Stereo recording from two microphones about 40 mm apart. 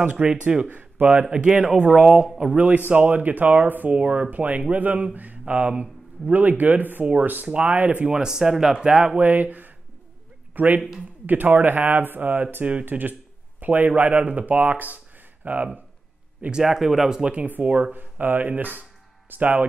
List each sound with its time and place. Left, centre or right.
0.0 s speech: right
0.7 s speech: right
1.3 s speech: right
2.5 s speech: right
3.9 s speech: right
8.1 s speech: centre
9.2 s speech: right
16.6 s speech: centre
17.2 s speech: right
17.9 s speech: right